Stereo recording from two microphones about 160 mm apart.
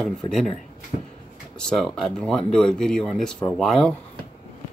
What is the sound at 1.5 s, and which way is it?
Speech, 5° left (ahead or behind).